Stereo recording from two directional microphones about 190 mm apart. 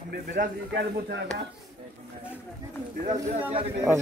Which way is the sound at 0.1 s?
50° right (ahead or behind).